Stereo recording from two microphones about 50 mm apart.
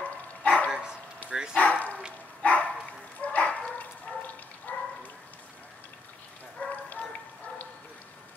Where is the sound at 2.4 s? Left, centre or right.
Left.